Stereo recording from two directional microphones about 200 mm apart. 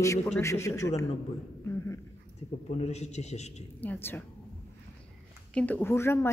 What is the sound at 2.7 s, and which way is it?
Speech, 35° left (ahead or behind).